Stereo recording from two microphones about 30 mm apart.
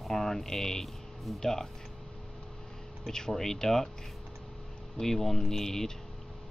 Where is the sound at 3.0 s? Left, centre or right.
Centre.